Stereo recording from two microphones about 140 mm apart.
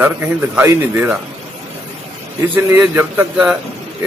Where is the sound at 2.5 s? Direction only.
15° right (ahead or behind).